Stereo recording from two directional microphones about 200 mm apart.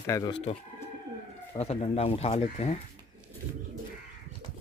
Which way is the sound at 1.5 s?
30° left (ahead or behind).